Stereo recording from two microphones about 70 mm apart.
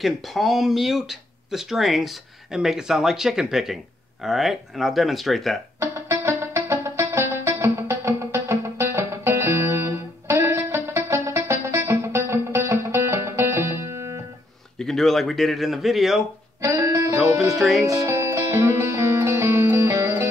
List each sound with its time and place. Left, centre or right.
0.0 s speech: centre
5.8 s music: right
14.8 s speech: centre
16.6 s music: right
17.5 s speech: centre
17.8 s music: right